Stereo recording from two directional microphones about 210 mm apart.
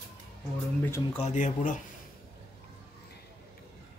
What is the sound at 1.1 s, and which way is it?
Speech, 35° left (ahead or behind).